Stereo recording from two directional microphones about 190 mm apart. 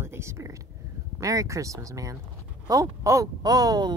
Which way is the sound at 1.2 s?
15° right (ahead or behind).